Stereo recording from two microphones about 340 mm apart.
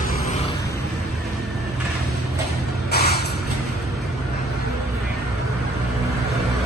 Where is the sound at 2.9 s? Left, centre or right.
Left.